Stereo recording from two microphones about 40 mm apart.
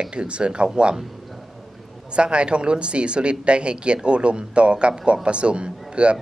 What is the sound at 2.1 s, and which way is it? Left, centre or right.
A man's voice, right.